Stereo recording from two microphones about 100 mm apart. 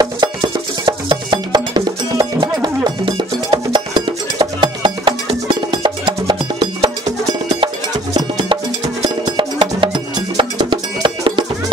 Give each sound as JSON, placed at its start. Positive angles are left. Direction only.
{"t": 0.0, "sound": "music", "side_deg": -45}
{"t": 9.2, "sound": "music", "side_deg": -55}